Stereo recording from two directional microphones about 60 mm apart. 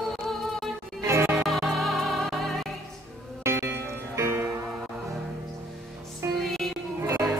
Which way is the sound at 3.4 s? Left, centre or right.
Right.